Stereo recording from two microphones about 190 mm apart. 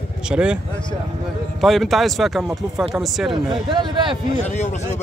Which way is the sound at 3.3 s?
25° right (ahead or behind).